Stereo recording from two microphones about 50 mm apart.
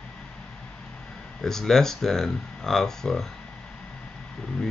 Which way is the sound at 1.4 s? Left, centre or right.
Centre.